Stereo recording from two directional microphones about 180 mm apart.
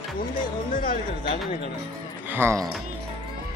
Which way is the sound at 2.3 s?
15° right (ahead or behind).